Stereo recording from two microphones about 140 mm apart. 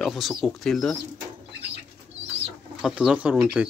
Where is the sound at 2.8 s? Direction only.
5° right (ahead or behind).